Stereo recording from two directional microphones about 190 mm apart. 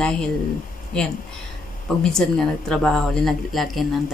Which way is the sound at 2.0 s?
5° left (ahead or behind).